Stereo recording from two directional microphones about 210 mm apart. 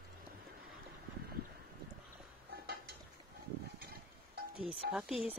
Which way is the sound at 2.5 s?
50° right (ahead or behind).